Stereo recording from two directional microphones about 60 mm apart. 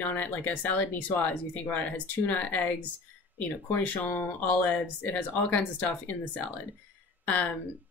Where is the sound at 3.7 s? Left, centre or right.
Left.